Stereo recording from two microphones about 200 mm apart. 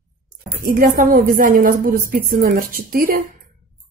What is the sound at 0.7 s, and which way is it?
A woman's voice, 45° right (ahead or behind).